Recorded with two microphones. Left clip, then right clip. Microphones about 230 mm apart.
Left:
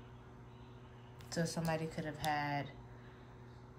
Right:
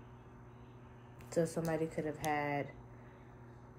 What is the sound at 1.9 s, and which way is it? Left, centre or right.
Speech, left.